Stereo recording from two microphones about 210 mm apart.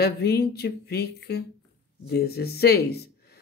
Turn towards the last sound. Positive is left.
turn(degrees=50)  # may be behind; listen again after turning